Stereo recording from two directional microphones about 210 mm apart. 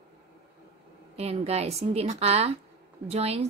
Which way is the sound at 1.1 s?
30° right (ahead or behind).